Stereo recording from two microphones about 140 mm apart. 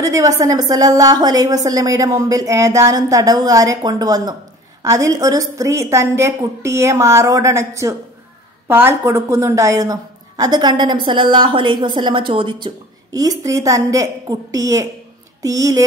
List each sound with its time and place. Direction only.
0.0 s a woman's voice: 25° right (ahead or behind)